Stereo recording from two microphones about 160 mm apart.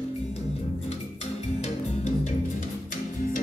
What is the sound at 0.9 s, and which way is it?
Music, 40° left (ahead or behind).